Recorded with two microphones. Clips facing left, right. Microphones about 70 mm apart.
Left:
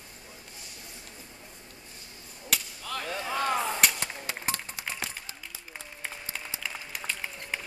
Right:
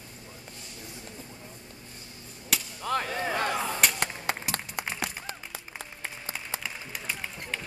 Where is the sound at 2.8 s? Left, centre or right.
Right.